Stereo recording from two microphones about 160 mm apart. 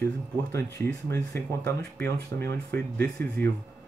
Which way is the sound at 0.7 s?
20° left (ahead or behind).